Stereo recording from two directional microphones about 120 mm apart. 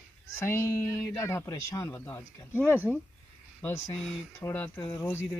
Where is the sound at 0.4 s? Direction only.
25° left (ahead or behind).